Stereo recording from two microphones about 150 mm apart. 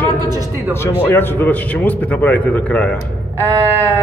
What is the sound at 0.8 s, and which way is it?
A man's voice, 15° left (ahead or behind).